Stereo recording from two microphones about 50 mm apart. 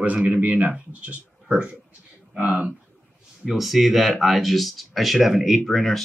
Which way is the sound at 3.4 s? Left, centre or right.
Centre.